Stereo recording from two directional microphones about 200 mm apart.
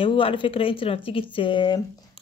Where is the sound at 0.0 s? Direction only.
25° left (ahead or behind).